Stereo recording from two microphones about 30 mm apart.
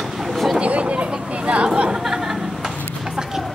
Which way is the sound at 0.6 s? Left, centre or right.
Right.